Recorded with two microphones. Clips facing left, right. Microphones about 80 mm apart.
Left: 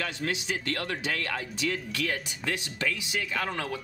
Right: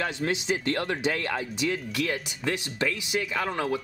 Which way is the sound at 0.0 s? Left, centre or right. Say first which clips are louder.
Right 4 dB; right.